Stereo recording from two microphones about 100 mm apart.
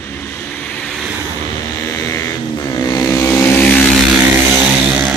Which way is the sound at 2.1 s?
30° left (ahead or behind).